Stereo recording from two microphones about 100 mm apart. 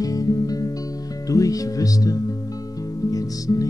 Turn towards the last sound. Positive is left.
turn(degrees=35)  # may be behind; listen again after turning